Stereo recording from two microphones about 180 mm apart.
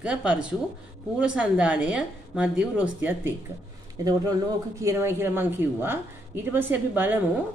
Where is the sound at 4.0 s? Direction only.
20° right (ahead or behind).